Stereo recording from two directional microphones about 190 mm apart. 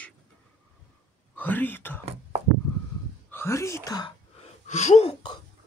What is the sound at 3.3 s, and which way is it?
Speech, 15° left (ahead or behind).